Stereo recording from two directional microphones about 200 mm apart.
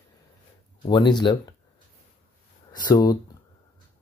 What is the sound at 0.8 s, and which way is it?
Speech, 20° left (ahead or behind).